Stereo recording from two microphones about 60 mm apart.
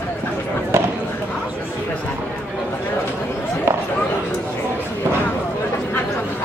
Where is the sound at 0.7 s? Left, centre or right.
Right.